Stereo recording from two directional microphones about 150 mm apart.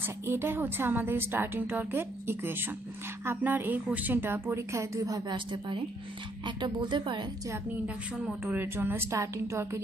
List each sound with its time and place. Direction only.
0.0 s a woman's voice: 15° right (ahead or behind); by 7.5 s 30° right (ahead or behind)
7.5 s a woman's voice: 15° right (ahead or behind)